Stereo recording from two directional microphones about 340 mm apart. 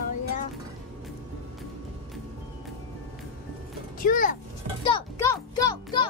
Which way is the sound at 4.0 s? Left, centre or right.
Left.